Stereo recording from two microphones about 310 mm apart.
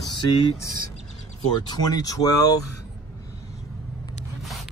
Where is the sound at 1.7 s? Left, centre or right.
Centre.